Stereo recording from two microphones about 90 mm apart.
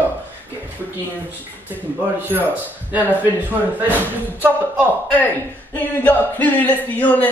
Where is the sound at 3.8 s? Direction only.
20° right (ahead or behind).